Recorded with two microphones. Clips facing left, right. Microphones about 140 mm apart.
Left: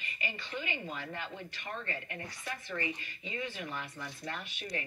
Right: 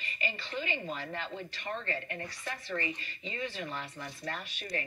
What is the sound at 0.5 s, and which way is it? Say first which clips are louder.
Speech: right 3 dB; 15° left (ahead or behind).